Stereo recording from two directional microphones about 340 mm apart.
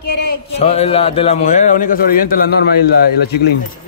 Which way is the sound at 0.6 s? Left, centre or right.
Centre.